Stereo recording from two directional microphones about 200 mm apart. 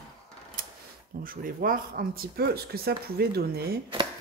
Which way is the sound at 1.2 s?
45° right (ahead or behind).